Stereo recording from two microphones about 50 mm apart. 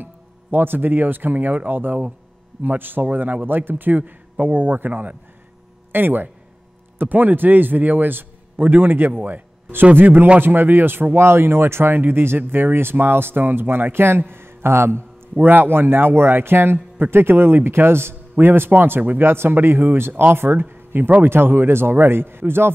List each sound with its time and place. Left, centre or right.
0.0 s a man's voice: right
11.1 s speech: right
15.3 s speech: right